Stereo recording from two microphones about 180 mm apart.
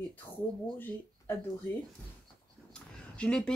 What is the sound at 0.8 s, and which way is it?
Speech, 10° left (ahead or behind).